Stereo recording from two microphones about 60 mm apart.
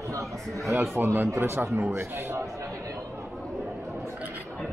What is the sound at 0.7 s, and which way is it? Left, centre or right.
A man's voice, right.